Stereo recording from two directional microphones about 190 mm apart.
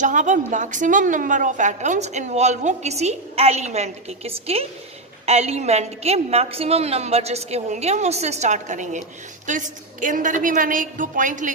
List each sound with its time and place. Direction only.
0.0 s a woman's voice: 40° right (ahead or behind)